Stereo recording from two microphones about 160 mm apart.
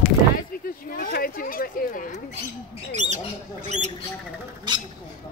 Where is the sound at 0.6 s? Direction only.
65° left (ahead or behind).